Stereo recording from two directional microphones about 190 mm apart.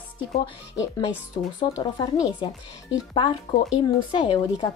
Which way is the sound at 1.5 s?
20° left (ahead or behind).